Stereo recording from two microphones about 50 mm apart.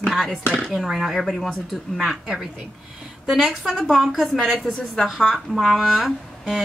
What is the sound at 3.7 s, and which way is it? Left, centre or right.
Speech, centre.